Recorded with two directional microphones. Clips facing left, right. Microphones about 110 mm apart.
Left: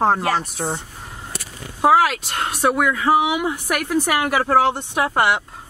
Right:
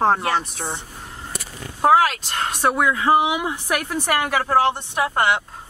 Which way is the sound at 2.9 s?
25° right (ahead or behind).